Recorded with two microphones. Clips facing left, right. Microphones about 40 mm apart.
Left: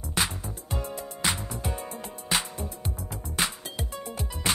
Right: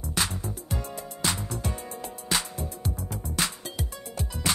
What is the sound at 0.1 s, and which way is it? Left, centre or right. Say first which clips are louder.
Music: left 1 dB; centre.